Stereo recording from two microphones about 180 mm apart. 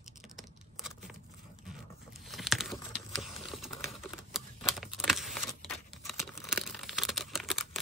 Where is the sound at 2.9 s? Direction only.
Centre (ahead or behind).